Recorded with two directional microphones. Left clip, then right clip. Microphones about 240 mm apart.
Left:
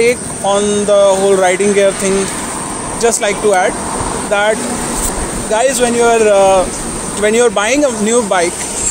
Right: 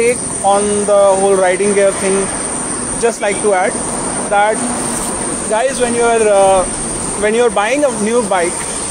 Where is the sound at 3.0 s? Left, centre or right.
Left.